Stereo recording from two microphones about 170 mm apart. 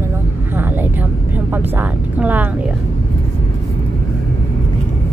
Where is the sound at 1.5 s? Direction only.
10° right (ahead or behind).